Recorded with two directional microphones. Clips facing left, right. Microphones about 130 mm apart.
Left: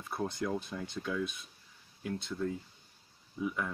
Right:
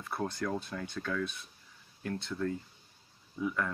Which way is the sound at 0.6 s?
15° left (ahead or behind).